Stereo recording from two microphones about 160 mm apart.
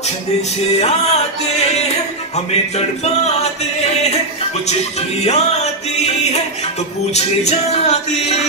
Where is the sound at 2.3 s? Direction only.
40° left (ahead or behind).